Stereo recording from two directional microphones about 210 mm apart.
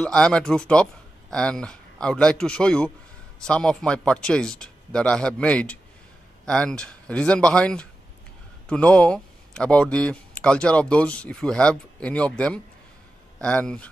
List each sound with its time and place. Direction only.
0.0 s speech: 5° left (ahead or behind)